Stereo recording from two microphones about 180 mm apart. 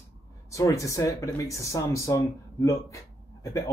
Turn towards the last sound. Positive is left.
turn(degrees=20)  # may be behind; listen again after turning